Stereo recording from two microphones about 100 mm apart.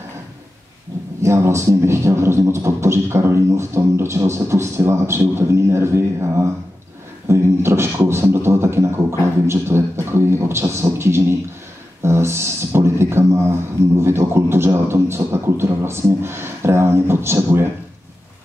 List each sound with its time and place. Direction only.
1.2 s speech: 25° right (ahead or behind)
8.1 s music: 25° right (ahead or behind)
9.5 s speech: 25° right (ahead or behind)